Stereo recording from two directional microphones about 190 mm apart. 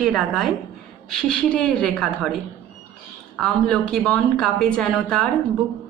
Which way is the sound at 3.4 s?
5° left (ahead or behind).